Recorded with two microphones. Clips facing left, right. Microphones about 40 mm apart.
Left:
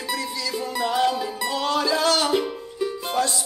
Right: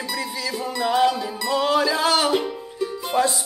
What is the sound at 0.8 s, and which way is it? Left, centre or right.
Music, centre.